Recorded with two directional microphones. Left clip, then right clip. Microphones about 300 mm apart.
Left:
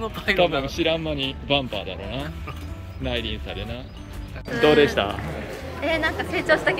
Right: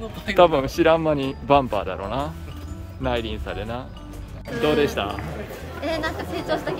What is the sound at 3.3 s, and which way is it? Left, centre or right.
Speech, right.